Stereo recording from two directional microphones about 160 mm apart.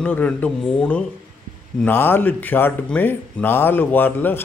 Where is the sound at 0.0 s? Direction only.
10° left (ahead or behind).